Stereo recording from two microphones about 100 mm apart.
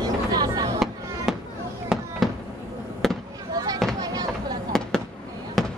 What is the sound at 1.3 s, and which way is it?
Fireworks, centre (ahead or behind).